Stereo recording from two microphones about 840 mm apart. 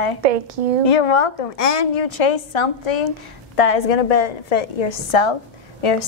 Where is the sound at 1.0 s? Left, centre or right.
Left.